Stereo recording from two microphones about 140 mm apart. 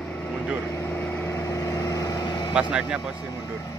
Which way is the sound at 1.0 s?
10° left (ahead or behind).